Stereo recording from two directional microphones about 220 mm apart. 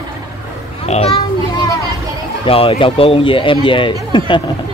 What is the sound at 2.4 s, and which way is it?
Speech, 25° left (ahead or behind).